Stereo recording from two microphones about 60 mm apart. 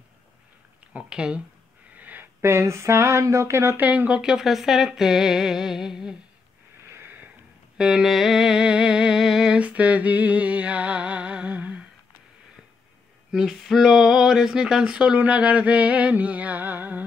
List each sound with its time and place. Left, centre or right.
0.9 s speech: centre
2.0 s a sound: right
2.4 s speech: right
3.7 s music: right
4.1 s speech: centre
6.9 s sniff: right
7.7 s speech: centre
9.7 s music: right
13.3 s a sound: centre
13.6 s a sound: centre
13.8 s speech: centre
15.1 s music: right